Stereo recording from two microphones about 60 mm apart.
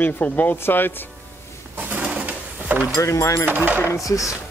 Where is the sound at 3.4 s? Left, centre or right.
Right.